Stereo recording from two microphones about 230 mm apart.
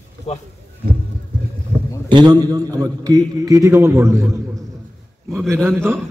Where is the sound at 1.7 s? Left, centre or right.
Centre.